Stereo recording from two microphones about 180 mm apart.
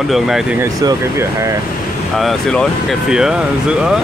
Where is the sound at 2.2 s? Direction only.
Centre (ahead or behind).